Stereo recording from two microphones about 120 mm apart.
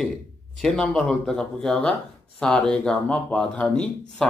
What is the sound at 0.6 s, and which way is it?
Speech, 5° left (ahead or behind).